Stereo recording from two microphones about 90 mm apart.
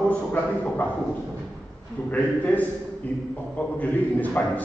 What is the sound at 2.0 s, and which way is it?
A man's voice, 15° left (ahead or behind).